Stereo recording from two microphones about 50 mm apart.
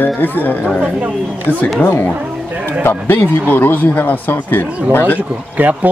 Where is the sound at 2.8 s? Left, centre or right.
Left.